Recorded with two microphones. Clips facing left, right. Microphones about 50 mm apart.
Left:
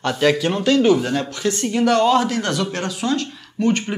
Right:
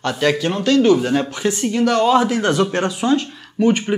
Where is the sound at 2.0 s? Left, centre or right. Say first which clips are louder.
Right 2 dB; centre.